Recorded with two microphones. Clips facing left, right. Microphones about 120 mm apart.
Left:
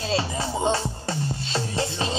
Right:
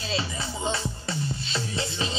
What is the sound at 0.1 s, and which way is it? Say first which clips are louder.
Music: left 5 dB; 45° left (ahead or behind).